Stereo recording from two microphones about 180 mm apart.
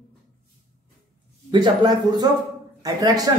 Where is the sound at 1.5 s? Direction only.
25° right (ahead or behind).